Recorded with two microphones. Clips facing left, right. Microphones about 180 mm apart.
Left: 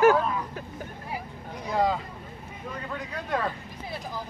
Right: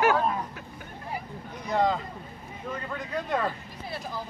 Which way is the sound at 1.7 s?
5° left (ahead or behind).